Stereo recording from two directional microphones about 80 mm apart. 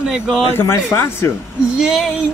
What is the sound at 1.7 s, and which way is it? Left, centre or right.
Speech, centre.